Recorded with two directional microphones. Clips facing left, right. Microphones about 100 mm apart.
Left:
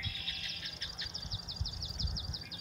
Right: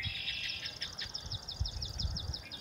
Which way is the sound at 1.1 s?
30° right (ahead or behind).